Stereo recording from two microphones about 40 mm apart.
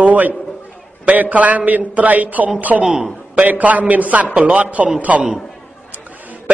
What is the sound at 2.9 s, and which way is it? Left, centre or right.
Speech, centre.